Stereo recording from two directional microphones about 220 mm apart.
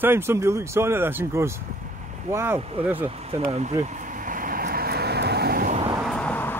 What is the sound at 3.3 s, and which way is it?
Vehicle, 30° right (ahead or behind).